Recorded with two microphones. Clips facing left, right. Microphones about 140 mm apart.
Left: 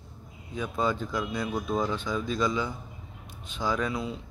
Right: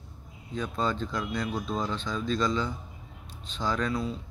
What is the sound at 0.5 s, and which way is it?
Speech, 10° left (ahead or behind).